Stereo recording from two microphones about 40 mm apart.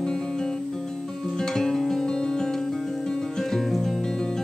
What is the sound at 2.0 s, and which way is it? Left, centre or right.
Music, centre.